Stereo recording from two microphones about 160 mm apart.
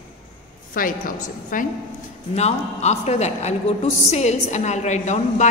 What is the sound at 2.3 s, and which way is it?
A woman's voice, 45° left (ahead or behind).